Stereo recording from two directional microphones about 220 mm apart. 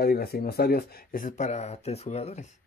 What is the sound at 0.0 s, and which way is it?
Speech, 45° left (ahead or behind).